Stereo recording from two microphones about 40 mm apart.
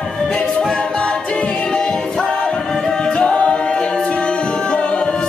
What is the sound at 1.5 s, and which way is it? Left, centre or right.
Music, centre.